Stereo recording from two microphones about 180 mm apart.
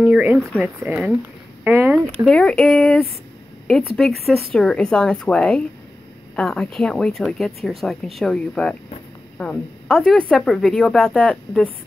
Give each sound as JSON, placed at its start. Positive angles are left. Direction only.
{"t": 0.0, "sound": "a sound", "side_deg": -5}
{"t": 0.6, "sound": "speech", "side_deg": -10}
{"t": 2.2, "sound": "speech", "side_deg": 5}